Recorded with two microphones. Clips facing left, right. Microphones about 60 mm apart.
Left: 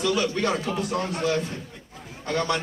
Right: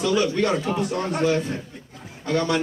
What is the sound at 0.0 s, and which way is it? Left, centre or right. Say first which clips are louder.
Speech: right 3 dB; centre.